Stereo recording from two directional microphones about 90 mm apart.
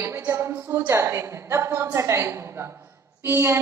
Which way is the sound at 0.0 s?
30° right (ahead or behind).